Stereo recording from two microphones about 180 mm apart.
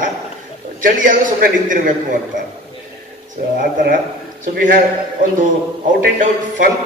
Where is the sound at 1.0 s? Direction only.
45° right (ahead or behind).